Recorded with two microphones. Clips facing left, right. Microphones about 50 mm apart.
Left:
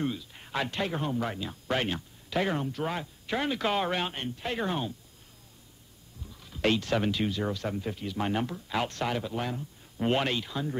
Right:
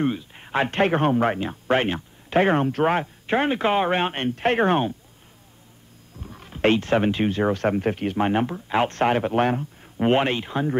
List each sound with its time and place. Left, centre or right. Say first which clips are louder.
0.0 s speech: right 8 dB; right
6.2 s speech: right 7 dB; right
8.2 s speech: right 6 dB; right
9.9 s speech: right 7 dB; right